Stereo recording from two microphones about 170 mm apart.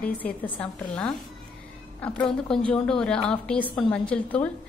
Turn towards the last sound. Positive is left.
turn(degrees=10)  # may be behind; listen again after turning